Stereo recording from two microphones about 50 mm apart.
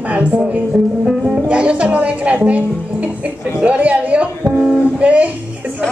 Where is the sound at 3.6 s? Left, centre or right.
Right.